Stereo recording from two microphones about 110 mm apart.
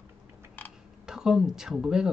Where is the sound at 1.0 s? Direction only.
5° right (ahead or behind).